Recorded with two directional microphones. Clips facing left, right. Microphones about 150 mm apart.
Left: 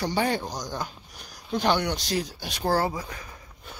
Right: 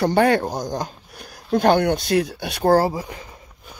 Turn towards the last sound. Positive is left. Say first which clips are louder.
# right 5 dB
turn(degrees=-25)  # may be behind; listen again after turning